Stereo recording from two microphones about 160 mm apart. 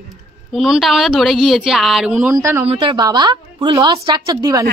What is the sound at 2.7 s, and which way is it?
A woman's voice, 30° right (ahead or behind).